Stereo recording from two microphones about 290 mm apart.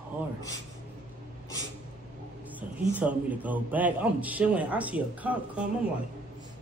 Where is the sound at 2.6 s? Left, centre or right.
Centre.